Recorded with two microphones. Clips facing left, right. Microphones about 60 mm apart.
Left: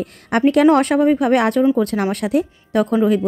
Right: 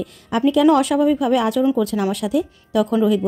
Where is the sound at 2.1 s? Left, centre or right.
Left.